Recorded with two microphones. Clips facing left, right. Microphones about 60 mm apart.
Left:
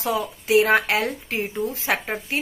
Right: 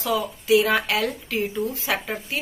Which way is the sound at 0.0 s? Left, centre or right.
Left.